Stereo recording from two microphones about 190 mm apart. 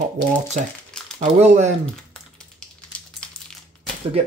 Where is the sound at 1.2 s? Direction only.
35° right (ahead or behind).